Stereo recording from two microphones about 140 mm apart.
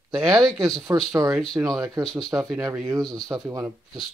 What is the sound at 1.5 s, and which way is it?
Speech, 25° right (ahead or behind).